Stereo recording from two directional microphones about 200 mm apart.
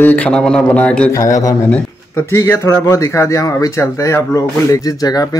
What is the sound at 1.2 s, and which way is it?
Speech, 15° left (ahead or behind).